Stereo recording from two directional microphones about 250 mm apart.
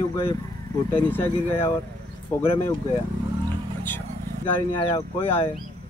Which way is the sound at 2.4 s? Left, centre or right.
Left.